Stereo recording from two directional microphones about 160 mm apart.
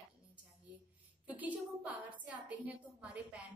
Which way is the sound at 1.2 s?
10° right (ahead or behind).